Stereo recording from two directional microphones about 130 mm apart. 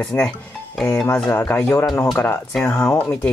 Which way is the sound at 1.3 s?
10° left (ahead or behind).